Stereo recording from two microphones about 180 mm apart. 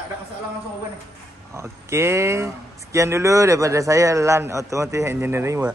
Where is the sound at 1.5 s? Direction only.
15° right (ahead or behind).